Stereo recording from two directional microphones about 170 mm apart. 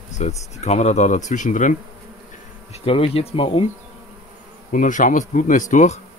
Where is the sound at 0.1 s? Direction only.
40° left (ahead or behind).